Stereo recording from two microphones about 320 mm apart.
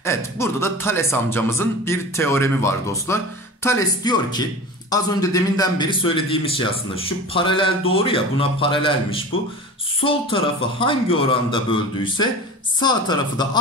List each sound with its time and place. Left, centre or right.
0.0 s a man's voice: centre